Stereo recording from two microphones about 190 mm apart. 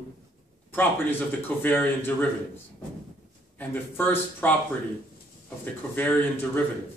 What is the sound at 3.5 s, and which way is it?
Speech, 10° left (ahead or behind).